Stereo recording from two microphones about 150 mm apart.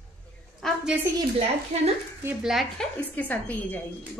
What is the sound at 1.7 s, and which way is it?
Speech, 45° right (ahead or behind).